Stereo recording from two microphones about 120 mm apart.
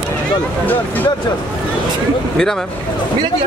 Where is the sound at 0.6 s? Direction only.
15° left (ahead or behind).